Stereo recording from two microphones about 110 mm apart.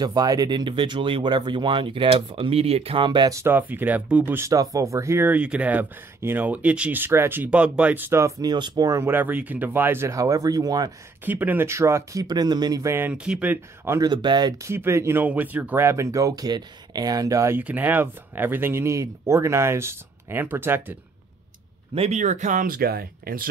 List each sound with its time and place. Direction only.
0.0 s speech: 35° right (ahead or behind)
3.3 s speech: 30° right (ahead or behind)
3.5 s speech: 15° right (ahead or behind)
4.5 s speech: 30° right (ahead or behind)
8.5 s speech: 40° right (ahead or behind)
9.0 s speech: 15° right (ahead or behind); by 10.9 s 35° right (ahead or behind)
11.2 s speech: 15° right (ahead or behind); by 12.9 s 35° right (ahead or behind)
13.1 s speech: 10° right (ahead or behind)
13.9 s speech: 40° right (ahead or behind)
14.6 s speech: 25° right (ahead or behind)
17.6 s speech: 15° right (ahead or behind)
21.9 s speech: 75° right (ahead or behind)